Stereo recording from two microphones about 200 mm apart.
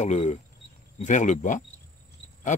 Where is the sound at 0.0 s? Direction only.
35° left (ahead or behind).